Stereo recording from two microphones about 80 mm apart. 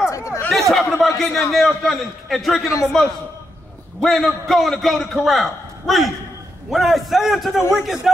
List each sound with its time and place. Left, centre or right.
0.1 s chatter: left
0.5 s a man's voice: centre